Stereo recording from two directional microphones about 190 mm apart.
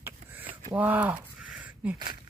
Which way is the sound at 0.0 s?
10° right (ahead or behind).